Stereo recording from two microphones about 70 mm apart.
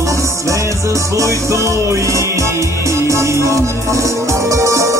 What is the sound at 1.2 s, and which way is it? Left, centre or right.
Music, right.